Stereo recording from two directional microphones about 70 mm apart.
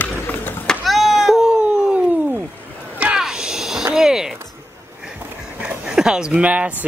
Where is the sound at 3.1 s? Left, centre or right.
Centre.